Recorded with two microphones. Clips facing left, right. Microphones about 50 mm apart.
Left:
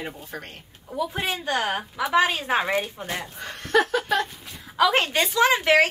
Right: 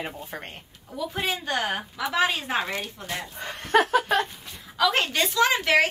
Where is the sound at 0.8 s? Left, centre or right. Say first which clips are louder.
Left 4 dB; centre.